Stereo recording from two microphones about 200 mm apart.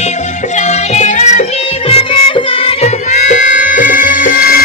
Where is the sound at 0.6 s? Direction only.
35° left (ahead or behind).